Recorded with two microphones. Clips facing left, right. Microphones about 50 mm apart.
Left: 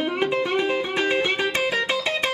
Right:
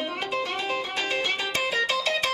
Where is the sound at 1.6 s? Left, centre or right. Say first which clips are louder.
Left 3 dB; centre.